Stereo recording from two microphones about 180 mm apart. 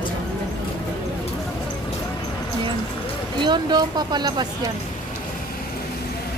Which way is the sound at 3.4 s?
25° right (ahead or behind).